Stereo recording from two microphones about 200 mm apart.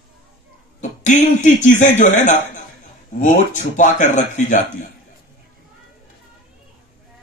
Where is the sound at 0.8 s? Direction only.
40° left (ahead or behind).